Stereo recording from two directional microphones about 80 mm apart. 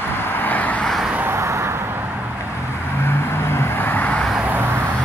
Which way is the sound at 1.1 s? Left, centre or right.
Right.